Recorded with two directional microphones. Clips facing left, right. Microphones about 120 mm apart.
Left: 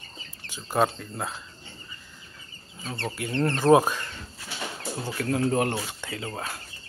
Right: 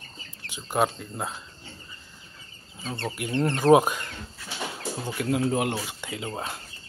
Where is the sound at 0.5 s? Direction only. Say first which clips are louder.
Left 1 dB; 15° right (ahead or behind).